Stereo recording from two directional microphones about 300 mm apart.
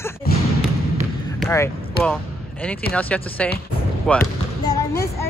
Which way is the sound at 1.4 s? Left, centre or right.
Centre.